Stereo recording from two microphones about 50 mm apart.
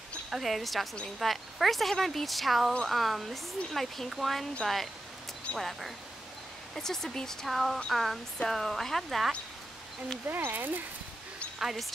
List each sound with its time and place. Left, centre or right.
0.4 s speech: centre
5.6 s speech: centre
10.2 s speech: right
11.6 s speech: centre